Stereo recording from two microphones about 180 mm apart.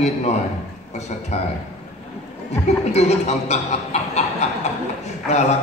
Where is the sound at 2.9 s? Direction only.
35° left (ahead or behind).